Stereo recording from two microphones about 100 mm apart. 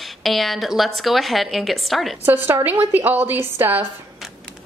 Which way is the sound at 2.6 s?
20° right (ahead or behind).